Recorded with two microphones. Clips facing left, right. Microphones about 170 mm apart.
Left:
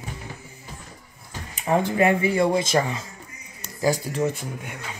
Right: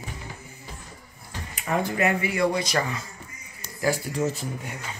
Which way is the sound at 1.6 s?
30° left (ahead or behind).